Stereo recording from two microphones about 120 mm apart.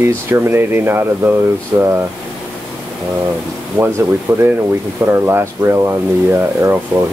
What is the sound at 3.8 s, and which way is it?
Speech, 20° right (ahead or behind).